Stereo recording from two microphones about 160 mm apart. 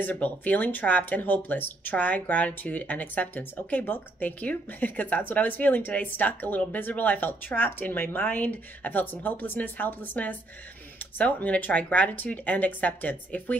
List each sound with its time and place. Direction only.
0.0 s speech: 10° left (ahead or behind)